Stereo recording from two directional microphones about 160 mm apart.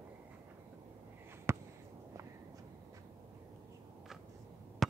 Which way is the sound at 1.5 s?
15° right (ahead or behind).